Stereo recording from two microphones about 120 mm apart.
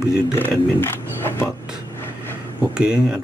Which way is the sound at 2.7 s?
5° right (ahead or behind).